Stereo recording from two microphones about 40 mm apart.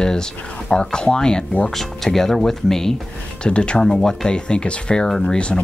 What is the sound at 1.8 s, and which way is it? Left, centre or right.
Speech, centre.